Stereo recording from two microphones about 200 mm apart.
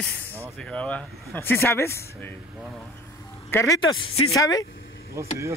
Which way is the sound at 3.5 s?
10° left (ahead or behind).